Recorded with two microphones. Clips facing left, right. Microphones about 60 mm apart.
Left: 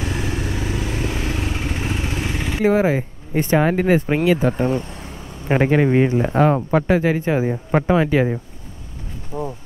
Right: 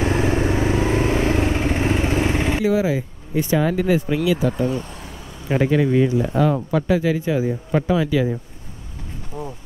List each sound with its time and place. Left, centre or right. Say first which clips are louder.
0.0 s vehicle: right 6 dB; right
2.6 s speech: left 7 dB; left